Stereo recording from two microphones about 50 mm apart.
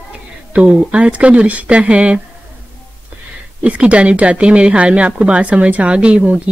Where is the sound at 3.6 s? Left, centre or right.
Right.